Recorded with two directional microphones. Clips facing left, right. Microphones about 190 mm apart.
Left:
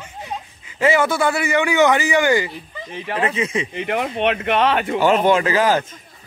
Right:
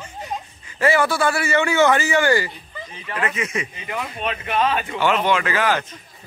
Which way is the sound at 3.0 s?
30° left (ahead or behind).